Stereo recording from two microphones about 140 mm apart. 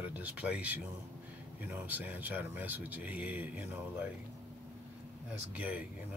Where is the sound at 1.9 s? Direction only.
10° right (ahead or behind).